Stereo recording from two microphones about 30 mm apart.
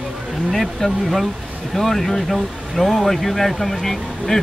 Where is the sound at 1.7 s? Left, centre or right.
Centre.